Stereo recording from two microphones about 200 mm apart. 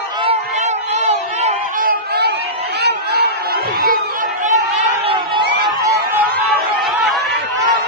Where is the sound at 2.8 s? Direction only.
55° right (ahead or behind).